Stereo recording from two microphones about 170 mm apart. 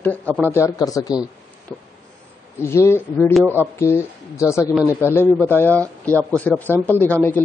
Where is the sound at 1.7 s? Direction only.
5° left (ahead or behind).